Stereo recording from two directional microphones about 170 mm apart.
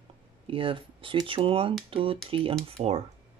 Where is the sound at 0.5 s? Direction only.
30° right (ahead or behind).